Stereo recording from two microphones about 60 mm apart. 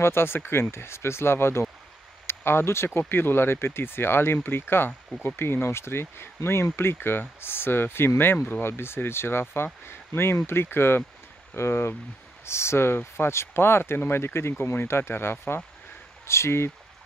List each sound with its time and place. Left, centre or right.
0.0 s speech: left